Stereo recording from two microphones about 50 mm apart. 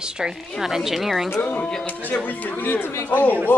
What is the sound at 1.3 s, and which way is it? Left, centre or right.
Speech, left.